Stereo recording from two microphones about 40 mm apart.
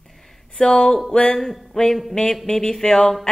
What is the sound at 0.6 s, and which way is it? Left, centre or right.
Speech, centre.